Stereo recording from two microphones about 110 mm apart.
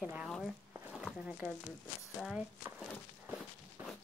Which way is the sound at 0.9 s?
5° right (ahead or behind).